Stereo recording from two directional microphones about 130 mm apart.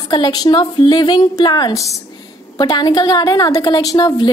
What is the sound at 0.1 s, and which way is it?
A woman's voice, 30° left (ahead or behind).